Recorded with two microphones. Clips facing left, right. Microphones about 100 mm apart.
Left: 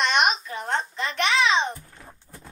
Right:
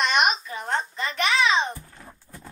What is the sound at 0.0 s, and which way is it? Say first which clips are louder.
Babbling: even; centre (ahead or behind).